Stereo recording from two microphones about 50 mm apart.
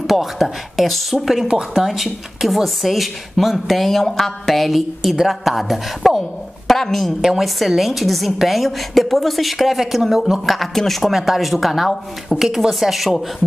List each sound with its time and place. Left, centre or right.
0.0 s speech: centre
7.2 s speech: centre